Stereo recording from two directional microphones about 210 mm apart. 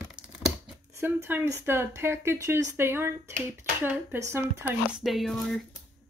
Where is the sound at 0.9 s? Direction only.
10° right (ahead or behind).